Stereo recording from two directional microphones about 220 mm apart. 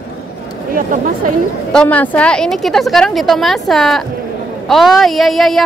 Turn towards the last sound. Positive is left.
turn(degrees=0)  # may be behind; listen again after turning